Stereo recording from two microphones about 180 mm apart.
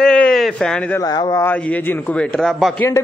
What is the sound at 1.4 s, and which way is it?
A man's voice, 10° left (ahead or behind).